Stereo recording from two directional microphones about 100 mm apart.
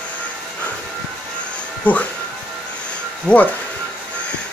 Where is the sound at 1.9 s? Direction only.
15° left (ahead or behind).